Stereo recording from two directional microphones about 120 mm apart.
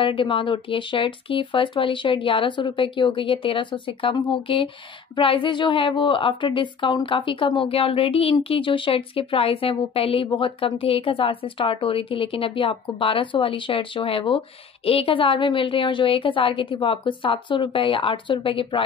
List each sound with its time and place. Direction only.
0.0 s a woman's voice: 45° left (ahead or behind)